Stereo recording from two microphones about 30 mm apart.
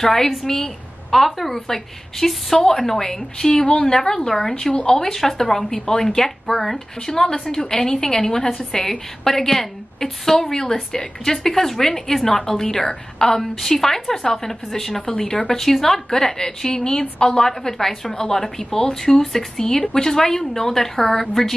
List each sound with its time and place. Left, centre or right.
0.0 s a woman's voice: centre
7.0 s a woman's voice: left
12.3 s a woman's voice: left
13.4 s a woman's voice: centre
15.5 s a woman's voice: centre